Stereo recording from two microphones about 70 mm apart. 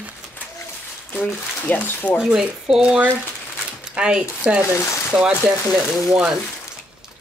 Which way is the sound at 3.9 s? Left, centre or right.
Centre.